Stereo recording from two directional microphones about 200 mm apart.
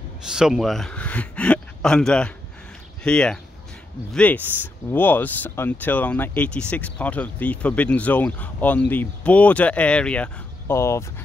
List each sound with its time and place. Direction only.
0.3 s speech: 5° right (ahead or behind); by 11.1 s 15° left (ahead or behind)